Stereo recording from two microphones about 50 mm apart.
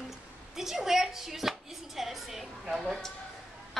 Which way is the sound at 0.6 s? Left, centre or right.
Centre.